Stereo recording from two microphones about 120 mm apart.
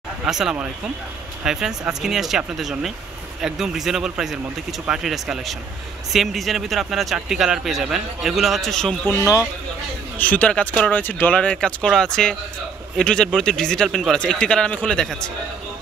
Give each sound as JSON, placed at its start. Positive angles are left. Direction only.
{"t": 0.2, "sound": "speech", "side_deg": -5}
{"t": 9.0, "sound": "speech", "side_deg": 25}
{"t": 10.1, "sound": "speech", "side_deg": 15}